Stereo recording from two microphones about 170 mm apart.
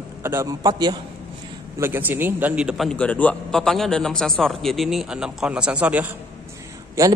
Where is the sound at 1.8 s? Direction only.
10° right (ahead or behind).